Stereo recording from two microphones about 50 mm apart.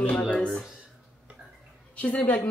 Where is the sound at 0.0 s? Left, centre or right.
Left.